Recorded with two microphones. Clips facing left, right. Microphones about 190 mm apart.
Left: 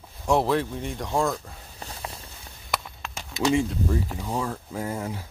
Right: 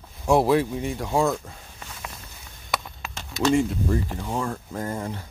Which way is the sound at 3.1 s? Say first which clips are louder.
Right 2 dB; 10° left (ahead or behind).